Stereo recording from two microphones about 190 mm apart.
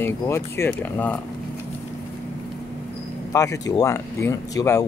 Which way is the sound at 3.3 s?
15° left (ahead or behind).